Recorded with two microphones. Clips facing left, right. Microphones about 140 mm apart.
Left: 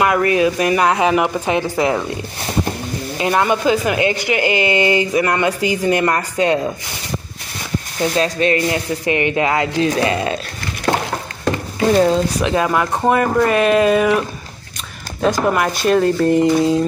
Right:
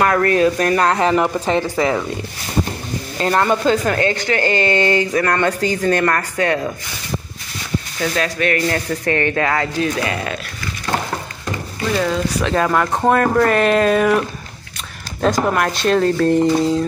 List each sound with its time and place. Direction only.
0.0 s speech: 10° left (ahead or behind)
3.2 s speech: 10° left (ahead or behind)
8.0 s speech: 25° left (ahead or behind)
11.8 s speech: 35° left (ahead or behind)
12.4 s speech: 15° left (ahead or behind)
15.2 s speech: 5° left (ahead or behind)